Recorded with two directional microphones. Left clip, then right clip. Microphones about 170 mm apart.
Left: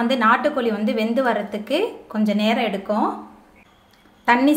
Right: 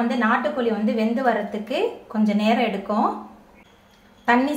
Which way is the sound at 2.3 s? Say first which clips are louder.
Even; 40° left (ahead or behind).